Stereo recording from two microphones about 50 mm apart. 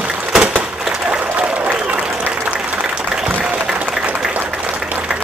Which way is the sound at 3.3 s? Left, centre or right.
Right.